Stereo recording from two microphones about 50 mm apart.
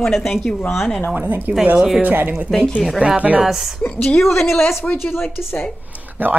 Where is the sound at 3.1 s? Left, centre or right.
Right.